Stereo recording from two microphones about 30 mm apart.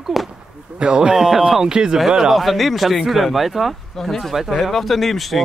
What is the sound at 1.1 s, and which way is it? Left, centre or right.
Speech, centre.